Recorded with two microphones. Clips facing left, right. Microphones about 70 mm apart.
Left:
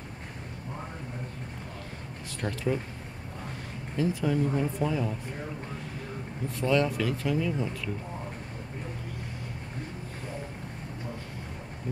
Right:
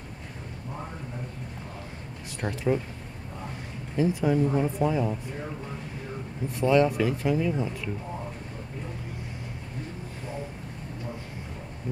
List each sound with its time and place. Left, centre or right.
2.4 s speech: centre
3.9 s speech: right
6.5 s speech: right